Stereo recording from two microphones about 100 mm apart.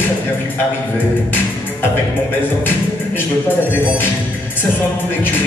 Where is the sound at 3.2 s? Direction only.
20° left (ahead or behind).